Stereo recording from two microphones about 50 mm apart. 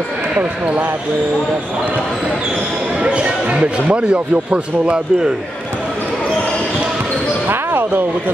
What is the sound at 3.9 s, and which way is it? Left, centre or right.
A man's voice, right.